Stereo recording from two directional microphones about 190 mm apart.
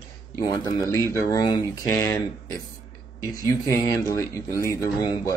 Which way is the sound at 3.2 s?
15° left (ahead or behind).